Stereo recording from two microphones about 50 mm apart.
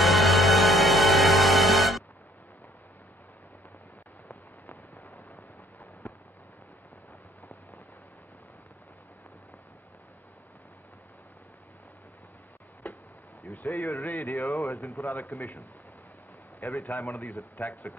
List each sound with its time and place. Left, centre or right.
0.0 s music: centre
4.9 s a sound: left
13.4 s speech: left
15.2 s speech: left
16.9 s speech: left